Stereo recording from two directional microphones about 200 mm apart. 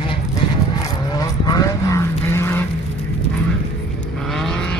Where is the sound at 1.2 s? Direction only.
20° left (ahead or behind).